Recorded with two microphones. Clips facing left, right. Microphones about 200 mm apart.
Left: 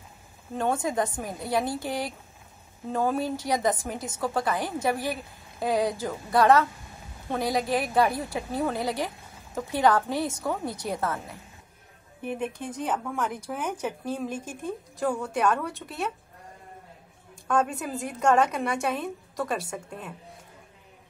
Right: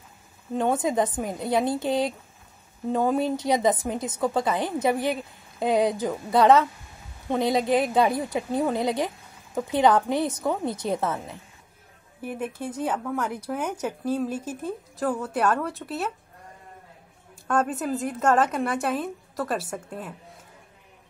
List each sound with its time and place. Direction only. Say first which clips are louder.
0.6 s a woman's voice: right 3 dB; 20° right (ahead or behind)
12.3 s a woman's voice: even; 5° right (ahead or behind)
17.6 s a woman's voice: right 5 dB; centre (ahead or behind)